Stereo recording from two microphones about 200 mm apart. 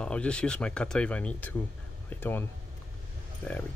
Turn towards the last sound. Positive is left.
turn(degrees=10)  # may be behind; listen again after turning